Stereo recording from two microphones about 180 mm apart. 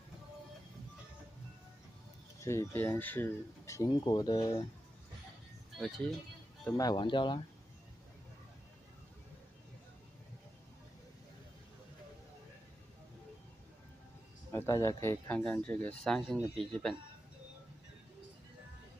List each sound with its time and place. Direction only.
2.4 s speech: 15° left (ahead or behind)
5.8 s speech: centre (ahead or behind)
6.6 s speech: 20° left (ahead or behind)
14.5 s speech: 15° left (ahead or behind)